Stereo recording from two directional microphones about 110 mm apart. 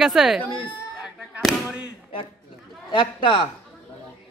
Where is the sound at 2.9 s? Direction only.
50° left (ahead or behind).